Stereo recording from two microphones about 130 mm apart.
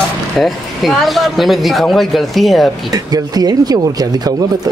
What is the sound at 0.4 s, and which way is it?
Speech, centre (ahead or behind).